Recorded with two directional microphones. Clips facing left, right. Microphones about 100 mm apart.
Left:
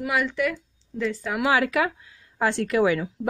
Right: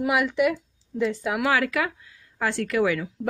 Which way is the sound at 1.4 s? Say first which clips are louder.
Left 3 dB; 20° left (ahead or behind).